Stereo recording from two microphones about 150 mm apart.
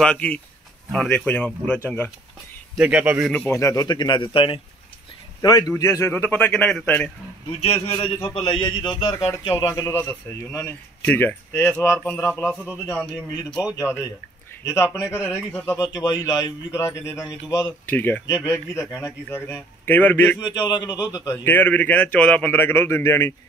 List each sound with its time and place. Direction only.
0.0 s a man's voice: 10° left (ahead or behind)
2.8 s a man's voice: 10° right (ahead or behind)
3.3 s a man's voice: 15° left (ahead or behind)
7.6 s a man's voice: 40° left (ahead or behind); by 12.5 s 5° left (ahead or behind)
13.7 s a man's voice: 20° left (ahead or behind)
18.2 s a man's voice: 25° left (ahead or behind)
20.3 s a man's voice: 30° left (ahead or behind)